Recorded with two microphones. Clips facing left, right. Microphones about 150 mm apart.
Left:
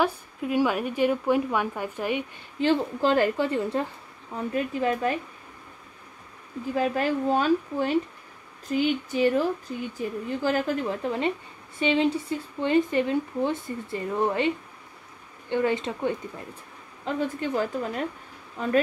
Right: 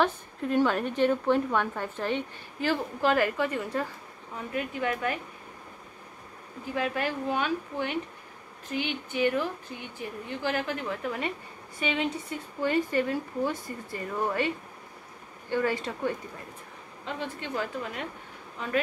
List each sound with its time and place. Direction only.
0.0 s a woman's voice: 10° left (ahead or behind)
2.6 s a woman's voice: 30° left (ahead or behind)
6.7 s a woman's voice: 40° left (ahead or behind); by 14.5 s 20° left (ahead or behind)
15.5 s a woman's voice: 20° left (ahead or behind)
17.0 s a woman's voice: 40° left (ahead or behind)